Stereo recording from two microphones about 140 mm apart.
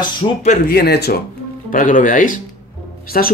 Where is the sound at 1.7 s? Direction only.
70° left (ahead or behind).